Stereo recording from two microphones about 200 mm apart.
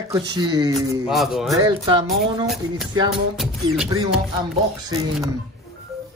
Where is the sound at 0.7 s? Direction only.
Centre (ahead or behind).